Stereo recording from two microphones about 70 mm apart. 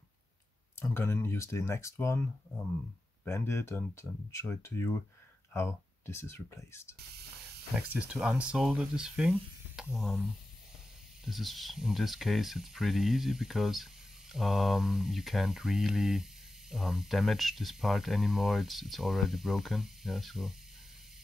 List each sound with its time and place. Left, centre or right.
0.7 s speech: left
3.3 s speech: left
7.7 s speech: centre
11.2 s speech: centre